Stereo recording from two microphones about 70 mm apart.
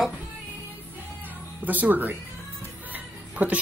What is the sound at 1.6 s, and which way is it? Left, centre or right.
Speech, right.